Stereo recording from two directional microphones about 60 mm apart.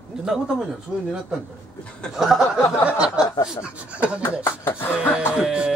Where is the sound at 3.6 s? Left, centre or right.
Right.